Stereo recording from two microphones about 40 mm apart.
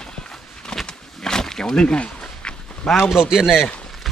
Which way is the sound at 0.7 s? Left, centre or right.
Centre.